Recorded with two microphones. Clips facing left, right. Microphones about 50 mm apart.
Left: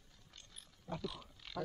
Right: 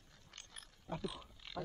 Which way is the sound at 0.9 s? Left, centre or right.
Centre.